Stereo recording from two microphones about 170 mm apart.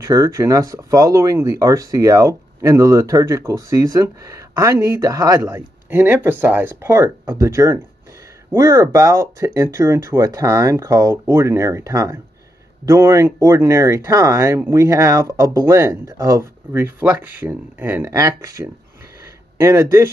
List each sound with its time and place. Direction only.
0.0 s speech: 20° right (ahead or behind)